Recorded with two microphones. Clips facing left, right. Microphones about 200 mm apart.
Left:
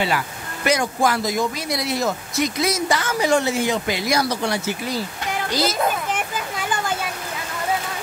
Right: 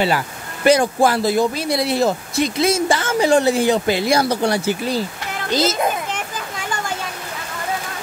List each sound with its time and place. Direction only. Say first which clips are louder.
0.7 s a child's voice: right 6 dB; 30° right (ahead or behind)